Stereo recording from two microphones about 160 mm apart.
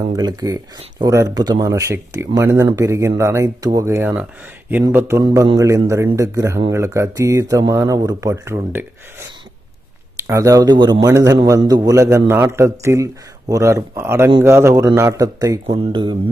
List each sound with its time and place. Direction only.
0.0 s a man's voice: 25° right (ahead or behind)
10.1 s a man's voice: 20° right (ahead or behind)
15.6 s speech: 35° right (ahead or behind)